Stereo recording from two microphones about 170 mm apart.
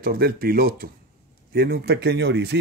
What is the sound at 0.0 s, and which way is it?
Speech, 60° right (ahead or behind).